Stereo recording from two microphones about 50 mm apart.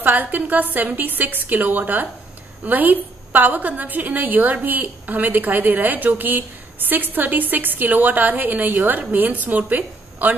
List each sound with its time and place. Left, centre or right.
0.0 s a woman's voice: right